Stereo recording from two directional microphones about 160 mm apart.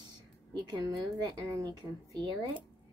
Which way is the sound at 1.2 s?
20° right (ahead or behind).